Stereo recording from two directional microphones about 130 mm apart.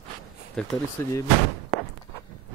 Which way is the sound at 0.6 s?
5° left (ahead or behind).